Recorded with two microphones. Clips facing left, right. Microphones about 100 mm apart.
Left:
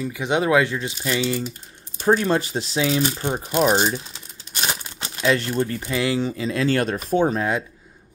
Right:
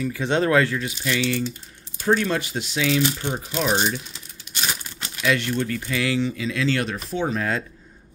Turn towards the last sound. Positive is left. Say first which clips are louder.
# left 2 dB
turn(degrees=20)  # may be behind; listen again after turning